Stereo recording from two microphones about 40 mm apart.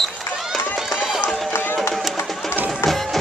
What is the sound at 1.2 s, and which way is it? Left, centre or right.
Run, left.